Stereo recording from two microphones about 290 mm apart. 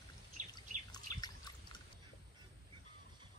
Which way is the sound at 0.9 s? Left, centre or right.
Centre.